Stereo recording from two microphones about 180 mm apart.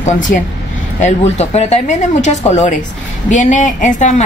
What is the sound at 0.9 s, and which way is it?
A woman's voice, 40° left (ahead or behind).